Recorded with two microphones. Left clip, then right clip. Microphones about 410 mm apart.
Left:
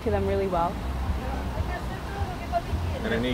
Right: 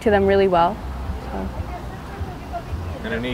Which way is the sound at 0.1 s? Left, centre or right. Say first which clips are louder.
Right 10 dB; right.